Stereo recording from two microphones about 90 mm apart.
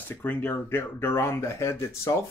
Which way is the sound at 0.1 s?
25° left (ahead or behind).